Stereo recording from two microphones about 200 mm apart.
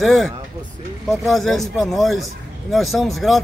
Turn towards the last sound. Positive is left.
turn(degrees=0)  # may be behind; listen again after turning